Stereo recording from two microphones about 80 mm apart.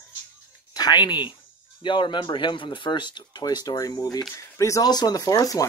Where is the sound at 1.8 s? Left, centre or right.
Left.